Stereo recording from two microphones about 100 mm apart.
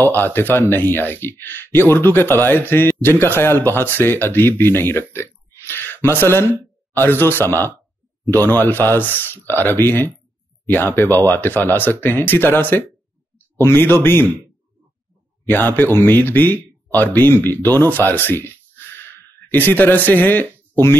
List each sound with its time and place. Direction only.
0.0 s speech: 20° left (ahead or behind)
15.4 s speech: 20° left (ahead or behind)